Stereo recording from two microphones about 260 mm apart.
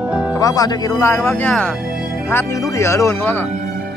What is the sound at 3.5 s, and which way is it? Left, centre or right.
Music, right.